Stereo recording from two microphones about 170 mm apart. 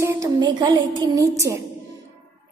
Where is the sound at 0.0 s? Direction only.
15° right (ahead or behind).